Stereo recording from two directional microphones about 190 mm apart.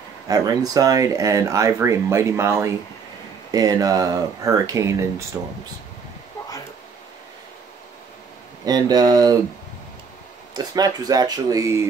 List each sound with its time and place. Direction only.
0.3 s speech: 20° right (ahead or behind)
8.6 s speech: 20° right (ahead or behind)
10.5 s speech: 20° right (ahead or behind)